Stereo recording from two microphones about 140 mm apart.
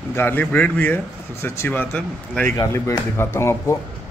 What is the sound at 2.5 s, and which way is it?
Speech, 30° left (ahead or behind).